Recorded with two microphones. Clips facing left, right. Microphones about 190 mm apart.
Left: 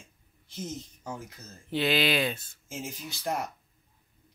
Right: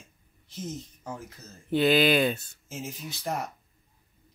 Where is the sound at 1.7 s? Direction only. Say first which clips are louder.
Right 5 dB; 50° right (ahead or behind).